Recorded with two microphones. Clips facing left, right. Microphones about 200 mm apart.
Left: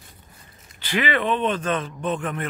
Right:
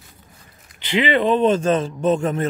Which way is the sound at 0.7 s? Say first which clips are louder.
Right 5 dB; 20° right (ahead or behind).